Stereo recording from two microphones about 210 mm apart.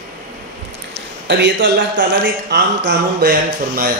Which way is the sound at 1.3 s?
60° right (ahead or behind).